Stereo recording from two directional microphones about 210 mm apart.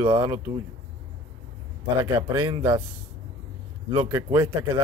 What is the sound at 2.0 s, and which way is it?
Speech, 15° right (ahead or behind).